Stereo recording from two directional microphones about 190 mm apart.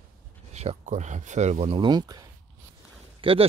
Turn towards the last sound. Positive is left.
turn(degrees=-30)  # may be behind; listen again after turning